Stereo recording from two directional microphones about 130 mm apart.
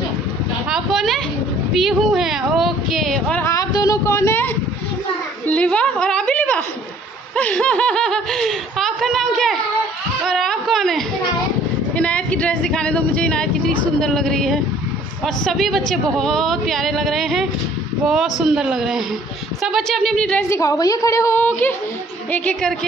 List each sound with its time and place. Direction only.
0.7 s speech: 5° right (ahead or behind)
3.3 s speech: 25° left (ahead or behind)
5.5 s a woman's voice: 10° left (ahead or behind)
20.4 s speech: 25° left (ahead or behind)
21.4 s speech: 15° left (ahead or behind)